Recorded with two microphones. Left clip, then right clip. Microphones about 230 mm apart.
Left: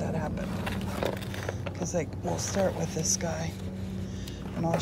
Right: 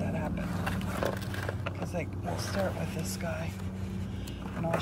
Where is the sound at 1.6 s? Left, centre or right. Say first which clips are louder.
Left 2 dB; centre.